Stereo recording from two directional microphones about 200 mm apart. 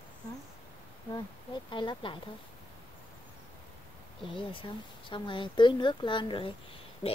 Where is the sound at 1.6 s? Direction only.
25° left (ahead or behind).